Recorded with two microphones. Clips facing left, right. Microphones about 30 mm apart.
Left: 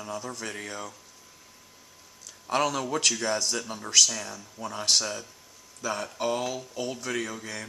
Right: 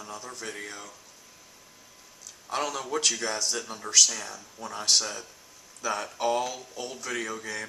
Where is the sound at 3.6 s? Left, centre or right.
Centre.